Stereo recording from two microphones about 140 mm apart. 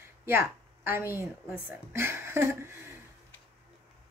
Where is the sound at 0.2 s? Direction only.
20° right (ahead or behind).